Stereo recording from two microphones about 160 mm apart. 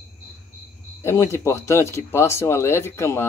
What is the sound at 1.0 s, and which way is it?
Speech, 15° left (ahead or behind).